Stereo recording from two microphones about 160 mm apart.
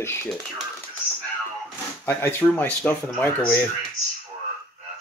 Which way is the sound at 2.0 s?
10° left (ahead or behind).